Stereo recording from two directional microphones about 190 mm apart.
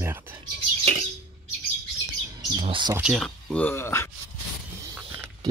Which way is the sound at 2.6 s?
25° right (ahead or behind).